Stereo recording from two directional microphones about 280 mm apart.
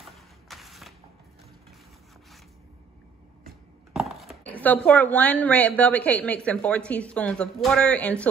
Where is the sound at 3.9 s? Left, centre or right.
Centre.